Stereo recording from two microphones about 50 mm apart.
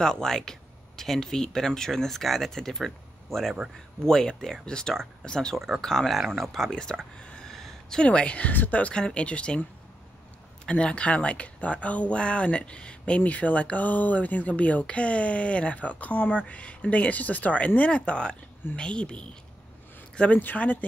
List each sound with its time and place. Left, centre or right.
0.0 s speech: centre
6.1 s speech: centre
6.7 s speech: centre
7.5 s a sound: centre
8.0 s speech: left
8.9 s speech: centre